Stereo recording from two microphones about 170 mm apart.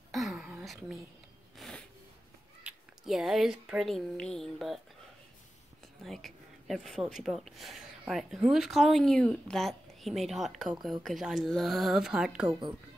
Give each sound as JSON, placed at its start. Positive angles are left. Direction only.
{"t": 0.1, "sound": "a sound", "side_deg": 0}
{"t": 2.6, "sound": "speech", "side_deg": 0}
{"t": 6.0, "sound": "speech", "side_deg": 0}
{"t": 12.4, "sound": "a woman's voice", "side_deg": -25}